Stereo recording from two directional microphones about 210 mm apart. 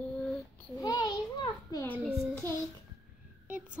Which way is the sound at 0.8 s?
20° left (ahead or behind).